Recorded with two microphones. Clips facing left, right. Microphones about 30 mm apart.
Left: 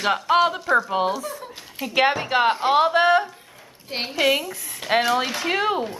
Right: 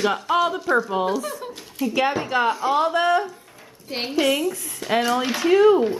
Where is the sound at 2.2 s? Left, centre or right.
Left.